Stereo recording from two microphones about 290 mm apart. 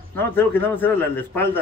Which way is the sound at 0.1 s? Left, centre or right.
Centre.